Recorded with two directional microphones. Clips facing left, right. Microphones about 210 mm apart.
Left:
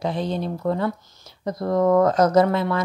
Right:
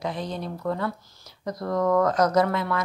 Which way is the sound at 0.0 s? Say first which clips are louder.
Left 5 dB; 30° left (ahead or behind).